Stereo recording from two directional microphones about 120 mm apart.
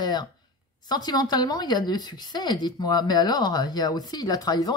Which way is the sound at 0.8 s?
35° left (ahead or behind).